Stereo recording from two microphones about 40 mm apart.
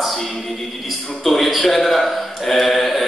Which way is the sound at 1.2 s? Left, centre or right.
Centre.